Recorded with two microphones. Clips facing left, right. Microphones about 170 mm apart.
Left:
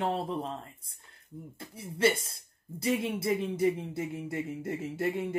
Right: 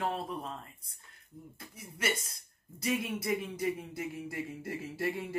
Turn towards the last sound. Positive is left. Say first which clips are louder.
# left 4 dB
turn(degrees=20)  # may be behind; listen again after turning